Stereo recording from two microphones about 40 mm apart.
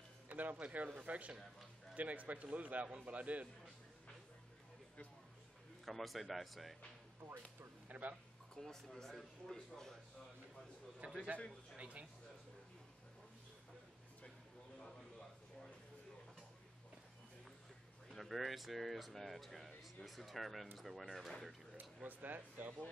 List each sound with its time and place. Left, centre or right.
0.3 s speech: right
5.9 s speech: centre
7.2 s speech: centre
7.9 s speech: right
8.5 s speech: centre
11.0 s speech: right
18.1 s speech: centre
21.7 s speech: right